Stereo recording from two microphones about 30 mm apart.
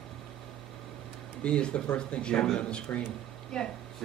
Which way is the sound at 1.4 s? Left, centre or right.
Left.